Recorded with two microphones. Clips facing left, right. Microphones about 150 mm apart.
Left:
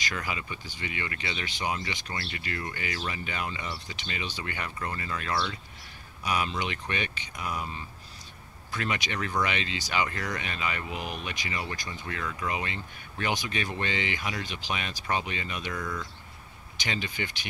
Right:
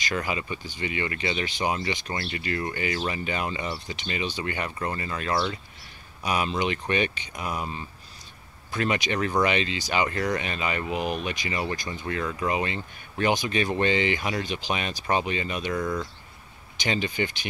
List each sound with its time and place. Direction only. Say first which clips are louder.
0.0 s speech: right 5 dB; 25° right (ahead or behind)
8.7 s speech: right 6 dB; 25° right (ahead or behind)
16.7 s speech: right 7 dB; 25° right (ahead or behind)